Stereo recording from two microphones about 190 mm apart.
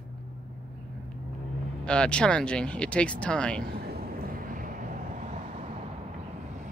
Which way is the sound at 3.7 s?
55° right (ahead or behind).